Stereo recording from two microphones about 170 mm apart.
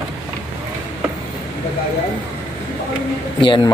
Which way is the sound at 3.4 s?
25° left (ahead or behind).